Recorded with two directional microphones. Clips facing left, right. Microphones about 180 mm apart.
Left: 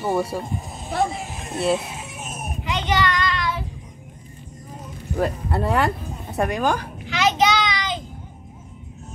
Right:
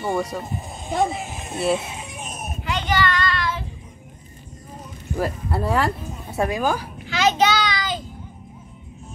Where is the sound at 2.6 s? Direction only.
20° left (ahead or behind).